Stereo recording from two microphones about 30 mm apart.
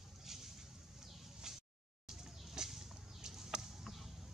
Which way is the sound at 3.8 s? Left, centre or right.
Centre.